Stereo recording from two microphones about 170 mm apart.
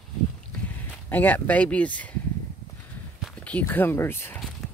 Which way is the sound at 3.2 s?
5° left (ahead or behind).